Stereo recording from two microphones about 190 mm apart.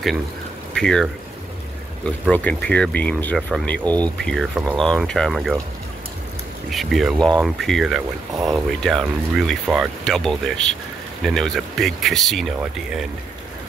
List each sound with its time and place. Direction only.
0.7 s speech: 5° left (ahead or behind)
2.0 s speech: 5° left (ahead or behind)
6.7 s speech: centre (ahead or behind)
8.4 s speech: 20° right (ahead or behind)
8.8 s speech: centre (ahead or behind)